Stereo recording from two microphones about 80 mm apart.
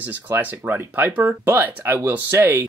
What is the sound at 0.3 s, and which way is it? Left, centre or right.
Speech, right.